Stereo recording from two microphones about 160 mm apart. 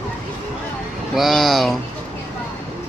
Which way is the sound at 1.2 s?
Centre (ahead or behind).